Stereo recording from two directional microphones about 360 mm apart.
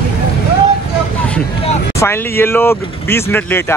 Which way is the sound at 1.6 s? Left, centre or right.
Left.